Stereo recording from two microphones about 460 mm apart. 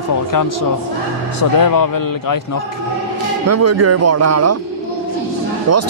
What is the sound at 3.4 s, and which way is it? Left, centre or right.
Speech, right.